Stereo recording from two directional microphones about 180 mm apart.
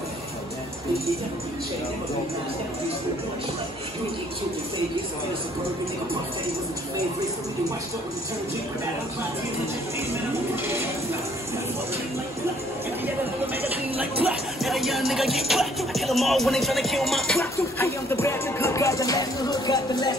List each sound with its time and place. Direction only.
10.5 s speech: 15° right (ahead or behind)
14.3 s music: centre (ahead or behind)
17.4 s music: 15° left (ahead or behind)